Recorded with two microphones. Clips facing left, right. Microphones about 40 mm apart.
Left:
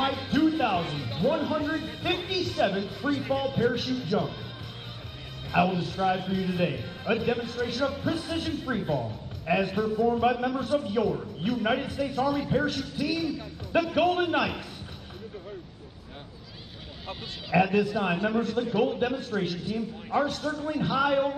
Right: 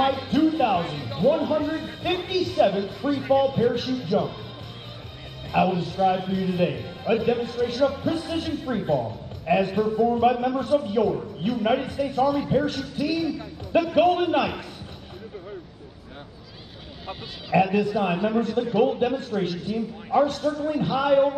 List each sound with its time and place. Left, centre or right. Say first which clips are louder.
0.0 s speech: right 4 dB; centre
5.5 s a man's voice: right 3 dB; centre
17.5 s a man's voice: right 3 dB; centre